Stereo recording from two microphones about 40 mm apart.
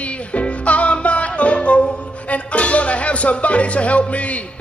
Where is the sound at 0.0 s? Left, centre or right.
Left.